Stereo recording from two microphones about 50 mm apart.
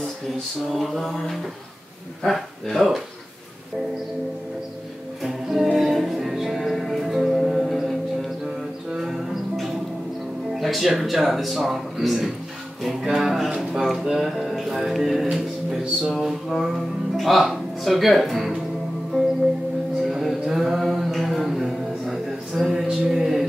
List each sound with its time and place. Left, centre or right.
0.7 s speech: centre
5.2 s music: centre
8.9 s music: centre
10.5 s speech: centre
15.8 s music: centre
16.2 s speech: centre
20.0 s mantra: centre